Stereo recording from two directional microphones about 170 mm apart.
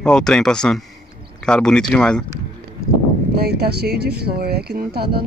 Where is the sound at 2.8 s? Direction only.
65° right (ahead or behind).